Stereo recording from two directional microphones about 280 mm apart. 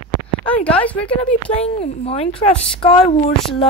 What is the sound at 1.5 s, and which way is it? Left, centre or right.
A woman's voice, left.